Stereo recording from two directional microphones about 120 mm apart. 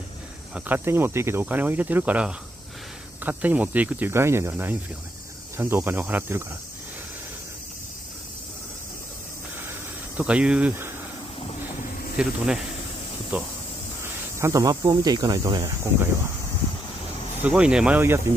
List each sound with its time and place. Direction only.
0.6 s speech: 15° right (ahead or behind)
10.1 s speech: 10° right (ahead or behind)
12.2 s speech: 10° right (ahead or behind)
14.4 s speech: 30° right (ahead or behind)
17.4 s speech: 10° right (ahead or behind)